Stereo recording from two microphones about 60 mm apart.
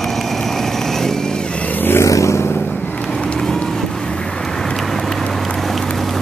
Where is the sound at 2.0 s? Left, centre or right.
Left.